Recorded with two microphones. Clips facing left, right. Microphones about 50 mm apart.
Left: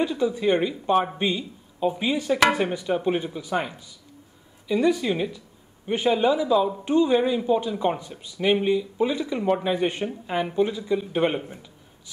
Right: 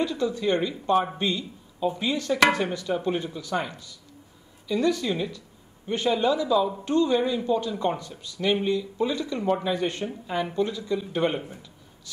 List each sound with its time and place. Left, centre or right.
0.0 s speech: centre